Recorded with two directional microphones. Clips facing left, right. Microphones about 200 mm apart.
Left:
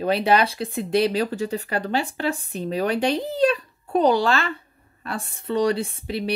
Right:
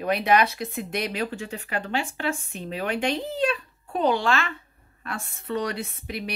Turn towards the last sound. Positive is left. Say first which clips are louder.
# left 6 dB
turn(degrees=30)  # may be behind; listen again after turning